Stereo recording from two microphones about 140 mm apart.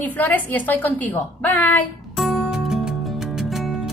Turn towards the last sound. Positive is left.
turn(degrees=0)  # may be behind; listen again after turning